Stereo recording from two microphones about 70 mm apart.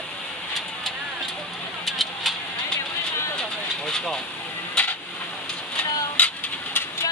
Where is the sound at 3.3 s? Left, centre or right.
Centre.